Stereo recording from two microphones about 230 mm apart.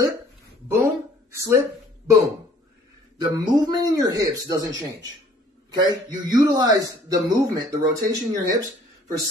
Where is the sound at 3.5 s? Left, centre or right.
Centre.